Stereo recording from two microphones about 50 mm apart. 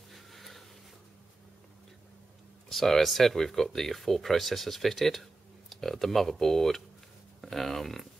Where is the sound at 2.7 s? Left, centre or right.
Centre.